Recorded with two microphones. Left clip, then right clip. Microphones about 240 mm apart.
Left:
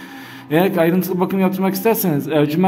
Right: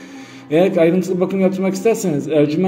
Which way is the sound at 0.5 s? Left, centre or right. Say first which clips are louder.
Right 2 dB; centre.